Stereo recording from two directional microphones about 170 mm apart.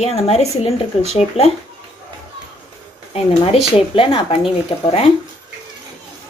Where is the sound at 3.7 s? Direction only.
30° left (ahead or behind).